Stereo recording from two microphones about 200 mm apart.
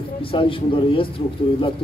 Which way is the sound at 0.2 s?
25° left (ahead or behind).